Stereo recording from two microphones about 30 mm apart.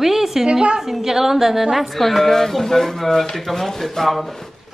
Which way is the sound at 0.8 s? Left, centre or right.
Centre.